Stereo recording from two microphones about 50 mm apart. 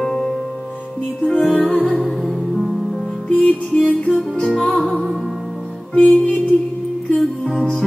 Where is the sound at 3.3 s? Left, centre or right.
Left.